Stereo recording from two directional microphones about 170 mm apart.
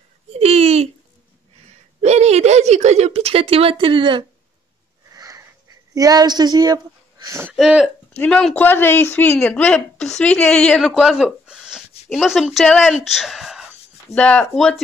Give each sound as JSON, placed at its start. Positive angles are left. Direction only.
{"t": 0.3, "sound": "a sound", "side_deg": -35}
{"t": 2.0, "sound": "a woman's voice", "side_deg": -40}
{"t": 5.1, "sound": "wheeze", "side_deg": -20}
{"t": 5.9, "sound": "speech", "side_deg": -20}
{"t": 7.5, "sound": "speech", "side_deg": 0}